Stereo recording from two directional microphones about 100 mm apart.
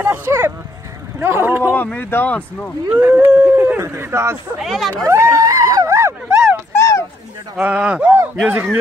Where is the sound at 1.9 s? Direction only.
20° left (ahead or behind).